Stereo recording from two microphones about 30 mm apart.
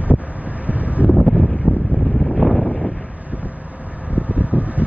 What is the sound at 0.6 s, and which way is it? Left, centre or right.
Wind noise, right.